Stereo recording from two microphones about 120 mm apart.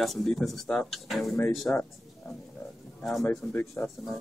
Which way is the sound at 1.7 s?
15° left (ahead or behind).